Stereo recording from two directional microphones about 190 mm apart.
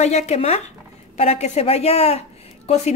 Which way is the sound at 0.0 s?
35° left (ahead or behind).